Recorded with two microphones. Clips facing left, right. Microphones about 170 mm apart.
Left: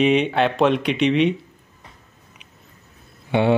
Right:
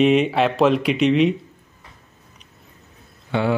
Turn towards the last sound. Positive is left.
turn(degrees=20)  # may be behind; listen again after turning